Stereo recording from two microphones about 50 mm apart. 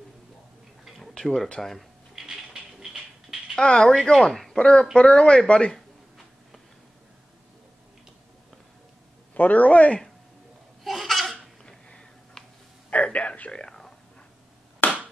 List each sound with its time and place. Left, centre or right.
0.8 s tick-tock: centre
1.1 s speech: centre
2.1 s music: centre
3.5 s a man's voice: centre
9.3 s a man's voice: left
10.8 s laughter: centre
11.6 s a sound: centre
12.9 s a sound: left
14.8 s a sound: left